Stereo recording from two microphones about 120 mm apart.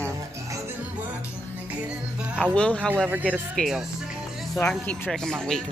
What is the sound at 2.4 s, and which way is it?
Speech, 10° left (ahead or behind).